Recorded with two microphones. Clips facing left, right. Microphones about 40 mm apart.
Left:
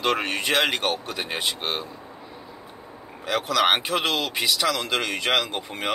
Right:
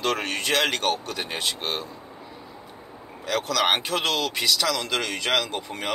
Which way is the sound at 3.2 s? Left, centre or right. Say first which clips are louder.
Left 2 dB; centre.